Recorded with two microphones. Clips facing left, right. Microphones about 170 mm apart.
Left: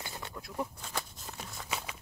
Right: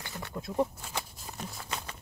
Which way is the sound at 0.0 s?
20° left (ahead or behind).